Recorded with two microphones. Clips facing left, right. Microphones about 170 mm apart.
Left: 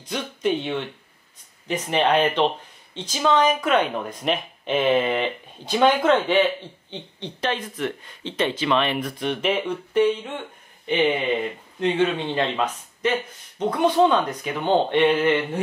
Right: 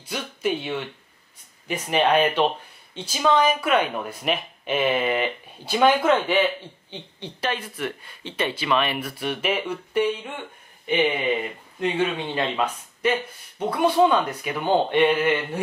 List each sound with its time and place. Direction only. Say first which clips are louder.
0.0 s speech: left 2 dB; 5° right (ahead or behind)